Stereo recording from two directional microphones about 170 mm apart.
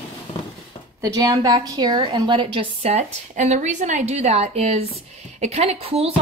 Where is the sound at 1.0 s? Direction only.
20° right (ahead or behind).